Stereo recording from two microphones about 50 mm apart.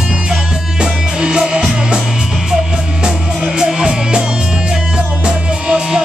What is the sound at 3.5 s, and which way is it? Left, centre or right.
Music, centre.